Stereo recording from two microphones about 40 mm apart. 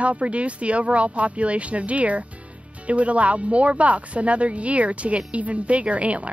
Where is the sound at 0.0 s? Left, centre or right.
Right.